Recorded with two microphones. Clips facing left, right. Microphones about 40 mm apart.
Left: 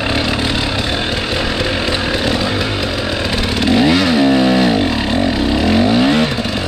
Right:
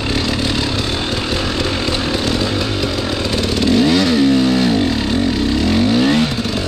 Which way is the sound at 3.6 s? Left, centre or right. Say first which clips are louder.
Left 1 dB; centre.